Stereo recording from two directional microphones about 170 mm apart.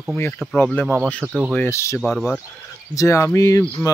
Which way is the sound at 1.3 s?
5° right (ahead or behind).